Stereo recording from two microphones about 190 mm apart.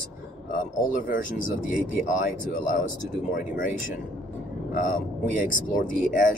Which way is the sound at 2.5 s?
45° left (ahead or behind).